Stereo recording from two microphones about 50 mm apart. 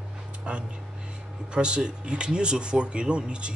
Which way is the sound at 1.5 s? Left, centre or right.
Centre.